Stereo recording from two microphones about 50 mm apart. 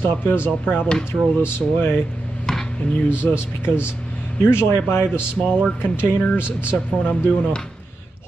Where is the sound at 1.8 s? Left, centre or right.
Left.